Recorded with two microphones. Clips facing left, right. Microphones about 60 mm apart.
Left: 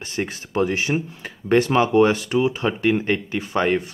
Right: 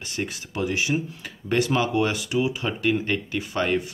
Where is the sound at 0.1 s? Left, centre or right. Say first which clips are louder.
Left 5 dB; left.